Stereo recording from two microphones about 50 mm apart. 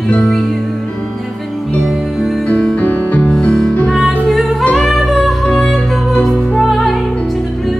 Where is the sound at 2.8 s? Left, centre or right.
Left.